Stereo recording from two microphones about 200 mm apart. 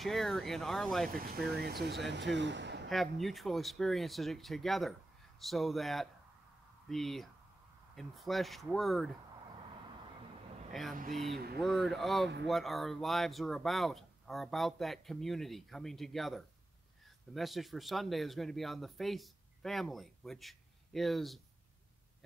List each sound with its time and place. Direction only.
0.0 s speech: centre (ahead or behind)
1.9 s speech: 60° right (ahead or behind)
2.9 s speech: centre (ahead or behind)
10.7 s speech: centre (ahead or behind)
11.3 s speech: 50° right (ahead or behind)
11.6 s speech: centre (ahead or behind)